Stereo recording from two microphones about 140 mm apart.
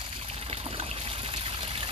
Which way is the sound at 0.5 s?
45° right (ahead or behind).